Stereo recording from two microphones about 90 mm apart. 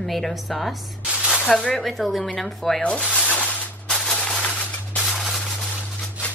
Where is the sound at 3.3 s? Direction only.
10° left (ahead or behind).